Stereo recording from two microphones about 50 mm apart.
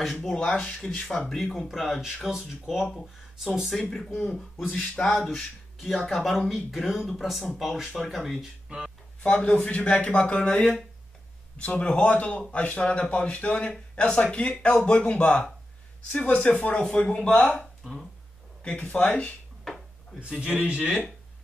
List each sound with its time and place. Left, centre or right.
0.0 s speech: centre
0.5 s speech: left
1.1 s speech: centre
1.5 s speech: centre
2.3 s speech: centre
3.8 s speech: centre
8.6 s speech: centre
9.2 s speech: left
16.9 s speech: left
20.2 s a man's voice: right